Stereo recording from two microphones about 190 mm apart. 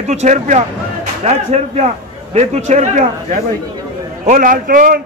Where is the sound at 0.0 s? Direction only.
35° right (ahead or behind).